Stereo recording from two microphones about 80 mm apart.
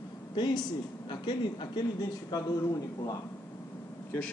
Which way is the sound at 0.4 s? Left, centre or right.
Left.